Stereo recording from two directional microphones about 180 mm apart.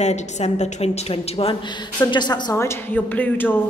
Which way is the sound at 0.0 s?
40° left (ahead or behind).